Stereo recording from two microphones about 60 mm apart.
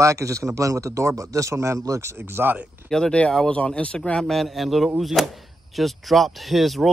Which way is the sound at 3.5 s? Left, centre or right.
Left.